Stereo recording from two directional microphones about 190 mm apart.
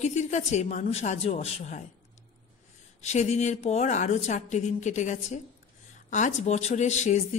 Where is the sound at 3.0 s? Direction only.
35° left (ahead or behind).